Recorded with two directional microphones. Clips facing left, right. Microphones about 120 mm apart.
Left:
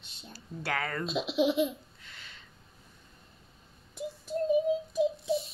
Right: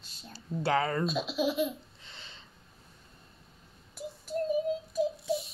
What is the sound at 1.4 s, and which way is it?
Laughter, 20° left (ahead or behind).